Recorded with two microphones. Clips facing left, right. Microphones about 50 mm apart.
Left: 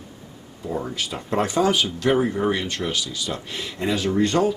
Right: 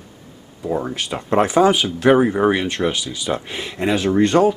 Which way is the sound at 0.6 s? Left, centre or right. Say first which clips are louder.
Right 5 dB; right.